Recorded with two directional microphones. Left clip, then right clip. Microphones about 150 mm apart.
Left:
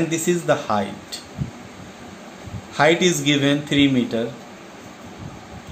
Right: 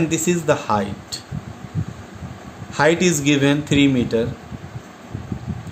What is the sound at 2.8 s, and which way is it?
Speech, 75° right (ahead or behind).